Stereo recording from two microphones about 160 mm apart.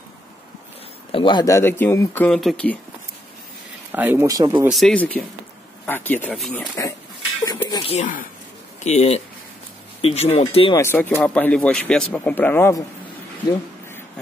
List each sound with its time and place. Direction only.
1.1 s speech: 30° left (ahead or behind); by 2.8 s 10° left (ahead or behind)
3.9 s speech: 10° right (ahead or behind)
4.6 s speech: centre (ahead or behind)
7.4 s a sound: 15° left (ahead or behind)
7.8 s speech: 45° left (ahead or behind)
10.8 s speech: 10° left (ahead or behind)